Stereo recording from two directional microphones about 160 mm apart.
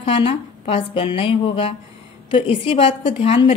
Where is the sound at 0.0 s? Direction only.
35° left (ahead or behind).